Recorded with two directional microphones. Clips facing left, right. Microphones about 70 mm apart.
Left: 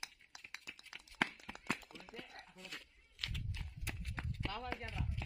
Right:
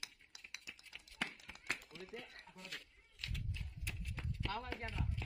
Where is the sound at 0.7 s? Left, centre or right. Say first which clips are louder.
Left 3 dB; left.